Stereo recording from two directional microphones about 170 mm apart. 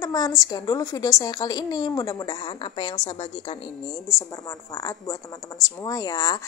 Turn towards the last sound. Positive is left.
turn(degrees=25)  # may be behind; listen again after turning